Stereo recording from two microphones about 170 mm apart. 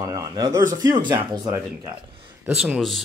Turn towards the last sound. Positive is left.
turn(degrees=0)  # may be behind; listen again after turning